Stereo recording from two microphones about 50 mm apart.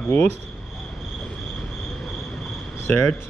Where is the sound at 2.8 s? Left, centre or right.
Left.